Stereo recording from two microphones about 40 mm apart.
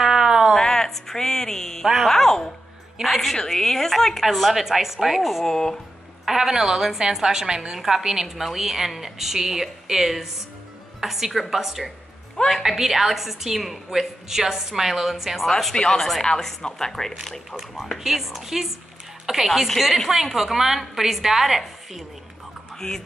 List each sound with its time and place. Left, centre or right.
0.0 s a sound: centre
0.6 s a sound: centre
2.0 s a woman's voice: centre
5.4 s a woman's voice: centre
6.2 s a woman's voice: centre
8.3 s a woman's voice: centre
15.7 s a woman's voice: centre
17.2 s a woman's voice: centre
22.8 s a woman's voice: centre